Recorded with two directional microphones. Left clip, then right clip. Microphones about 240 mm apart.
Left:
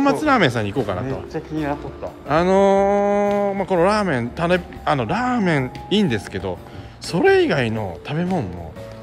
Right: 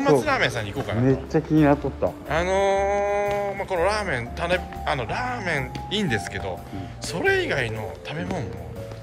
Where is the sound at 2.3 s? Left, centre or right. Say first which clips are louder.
Left 7 dB; left.